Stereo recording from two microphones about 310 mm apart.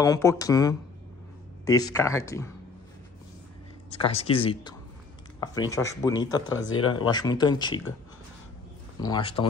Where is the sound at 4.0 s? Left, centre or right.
Centre.